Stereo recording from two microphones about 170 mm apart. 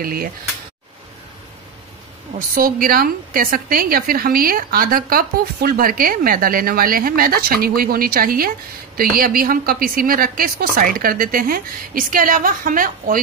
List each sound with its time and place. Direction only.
0.0 s a woman's voice: 60° right (ahead or behind)
2.3 s a woman's voice: 55° right (ahead or behind)